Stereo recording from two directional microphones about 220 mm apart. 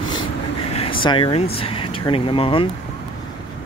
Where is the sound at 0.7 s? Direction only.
25° left (ahead or behind).